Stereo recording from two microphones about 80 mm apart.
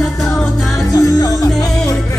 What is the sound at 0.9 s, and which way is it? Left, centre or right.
Music, left.